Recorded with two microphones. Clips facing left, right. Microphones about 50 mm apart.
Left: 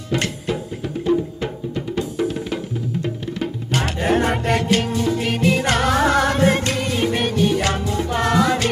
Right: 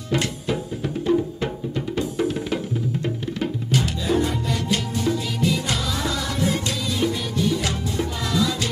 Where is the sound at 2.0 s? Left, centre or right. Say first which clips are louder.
Left 1 dB; centre.